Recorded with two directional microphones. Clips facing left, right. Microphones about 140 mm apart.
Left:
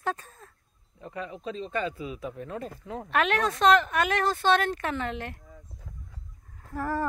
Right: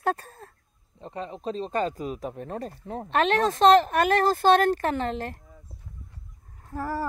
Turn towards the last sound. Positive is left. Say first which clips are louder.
# even
turn(degrees=-10)  # may be behind; listen again after turning